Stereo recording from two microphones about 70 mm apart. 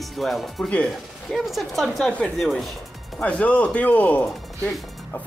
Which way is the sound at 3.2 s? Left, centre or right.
Centre.